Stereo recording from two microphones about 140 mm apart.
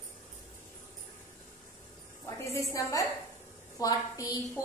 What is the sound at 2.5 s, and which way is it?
A woman's voice, 25° left (ahead or behind).